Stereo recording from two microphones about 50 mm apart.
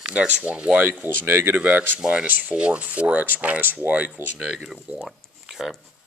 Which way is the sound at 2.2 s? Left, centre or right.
Right.